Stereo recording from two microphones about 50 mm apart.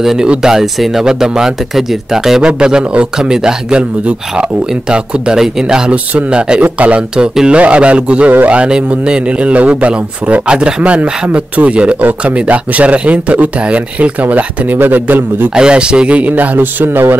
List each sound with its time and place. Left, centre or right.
0.0 s speech: centre
2.4 s a man's voice: right
14.2 s a man's voice: right
15.5 s a man's voice: centre; by 17.0 s right